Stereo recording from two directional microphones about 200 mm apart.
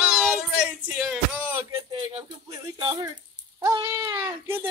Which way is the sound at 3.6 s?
15° right (ahead or behind).